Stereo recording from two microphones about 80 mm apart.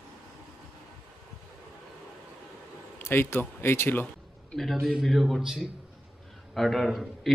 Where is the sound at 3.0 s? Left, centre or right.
Left.